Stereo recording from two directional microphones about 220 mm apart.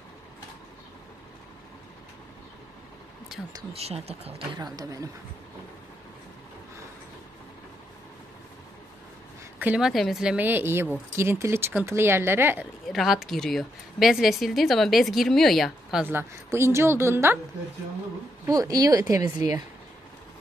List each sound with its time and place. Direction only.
3.7 s speech: 25° right (ahead or behind)
9.6 s a woman's voice: 5° right (ahead or behind)
18.4 s a woman's voice: 15° right (ahead or behind)